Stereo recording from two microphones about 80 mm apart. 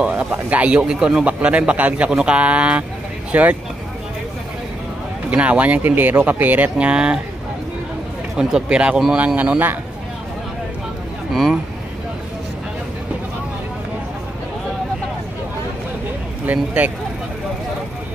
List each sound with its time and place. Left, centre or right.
0.0 s speech: centre
5.3 s speech: centre
8.4 s speech: centre
16.4 s speech: right